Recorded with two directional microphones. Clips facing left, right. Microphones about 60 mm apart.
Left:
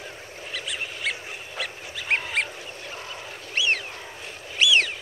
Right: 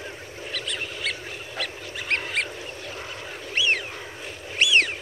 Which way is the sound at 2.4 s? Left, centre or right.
Centre.